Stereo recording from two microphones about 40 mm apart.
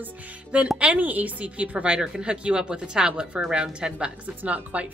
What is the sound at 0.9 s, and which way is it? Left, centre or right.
Speech, right.